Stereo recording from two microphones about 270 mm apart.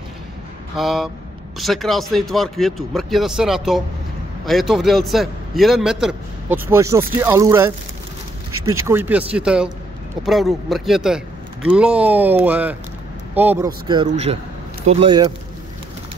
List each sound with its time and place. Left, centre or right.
0.7 s a man's voice: centre
8.5 s a sound: right
8.7 s a man's voice: centre
13.8 s speech: centre